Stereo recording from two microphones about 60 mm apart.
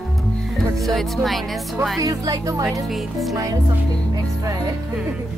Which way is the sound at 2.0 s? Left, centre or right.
Right.